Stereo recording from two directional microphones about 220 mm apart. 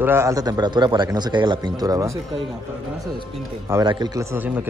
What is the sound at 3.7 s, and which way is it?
Speech, 15° right (ahead or behind).